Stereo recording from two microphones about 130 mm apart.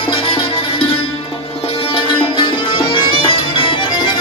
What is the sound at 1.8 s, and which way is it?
Sitar, 45° left (ahead or behind).